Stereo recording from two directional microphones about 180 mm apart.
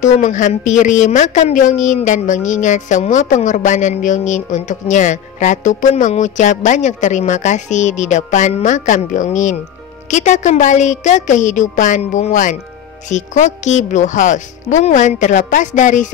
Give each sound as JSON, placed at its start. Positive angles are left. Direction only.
{"t": 0.0, "sound": "a woman's voice", "side_deg": 45}